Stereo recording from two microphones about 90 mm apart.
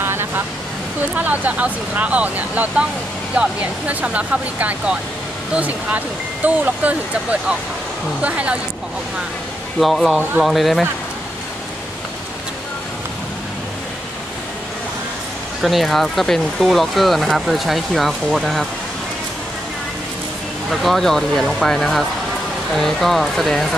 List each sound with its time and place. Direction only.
0.0 s vehicle: 25° right (ahead or behind)
1.1 s speech: 15° right (ahead or behind)
9.8 s speech: centre (ahead or behind)
15.6 s speech: centre (ahead or behind)
20.7 s speech: centre (ahead or behind)